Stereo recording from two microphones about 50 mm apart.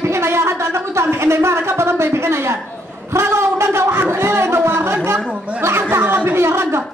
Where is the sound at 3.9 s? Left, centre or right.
Right.